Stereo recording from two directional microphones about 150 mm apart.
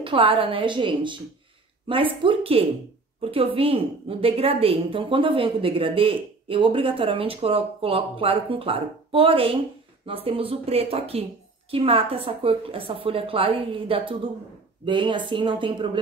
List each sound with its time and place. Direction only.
0.0 s a woman's voice: 35° right (ahead or behind)
2.2 s a woman's voice: 40° right (ahead or behind)